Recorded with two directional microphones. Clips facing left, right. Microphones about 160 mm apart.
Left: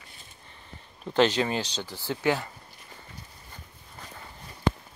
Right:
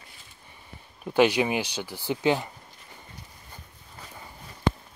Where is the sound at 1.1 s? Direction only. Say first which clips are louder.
Right 2 dB; 10° right (ahead or behind).